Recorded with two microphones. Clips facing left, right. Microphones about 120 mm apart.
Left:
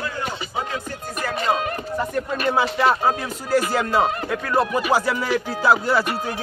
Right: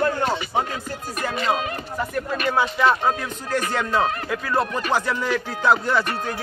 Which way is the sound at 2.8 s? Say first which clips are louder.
Even; 10° left (ahead or behind).